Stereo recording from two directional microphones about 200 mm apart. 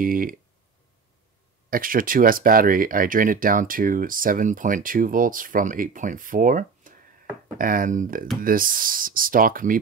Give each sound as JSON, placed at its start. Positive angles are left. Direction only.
{"t": 0.0, "sound": "speech", "side_deg": -45}
{"t": 1.7, "sound": "speech", "side_deg": -45}